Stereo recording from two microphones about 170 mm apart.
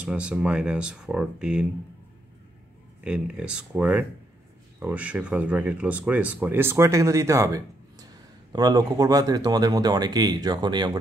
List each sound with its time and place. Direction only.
0.0 s speech: 5° right (ahead or behind)
3.0 s speech: 5° right (ahead or behind); by 10.9 s 25° right (ahead or behind)